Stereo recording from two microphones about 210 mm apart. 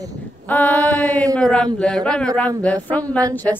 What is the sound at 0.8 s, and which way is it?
Mantra, 15° right (ahead or behind).